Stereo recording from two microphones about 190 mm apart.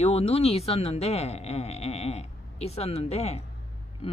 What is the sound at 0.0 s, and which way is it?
Speech, 35° left (ahead or behind).